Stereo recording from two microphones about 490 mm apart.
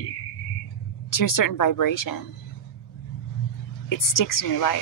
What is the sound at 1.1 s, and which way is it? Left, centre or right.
Speech, left.